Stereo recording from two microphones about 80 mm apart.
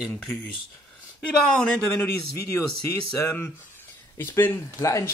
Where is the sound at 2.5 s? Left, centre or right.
Left.